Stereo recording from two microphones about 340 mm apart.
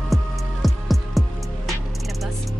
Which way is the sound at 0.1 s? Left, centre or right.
Centre.